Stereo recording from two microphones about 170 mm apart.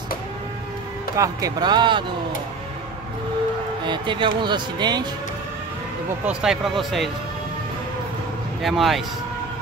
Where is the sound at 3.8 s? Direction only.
25° right (ahead or behind).